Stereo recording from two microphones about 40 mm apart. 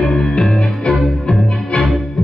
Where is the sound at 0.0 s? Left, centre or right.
Left.